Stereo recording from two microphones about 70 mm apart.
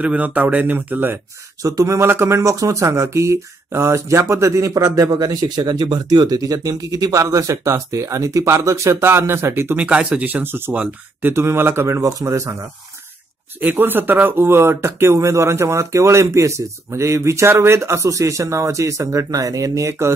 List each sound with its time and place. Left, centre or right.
0.0 s speech: right
1.6 s speech: right
2.0 s speech: right
9.8 s speech: centre
11.3 s speech: right
12.0 s speech: right
13.6 s speech: right